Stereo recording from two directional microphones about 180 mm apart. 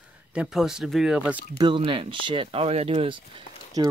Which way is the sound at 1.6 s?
25° right (ahead or behind).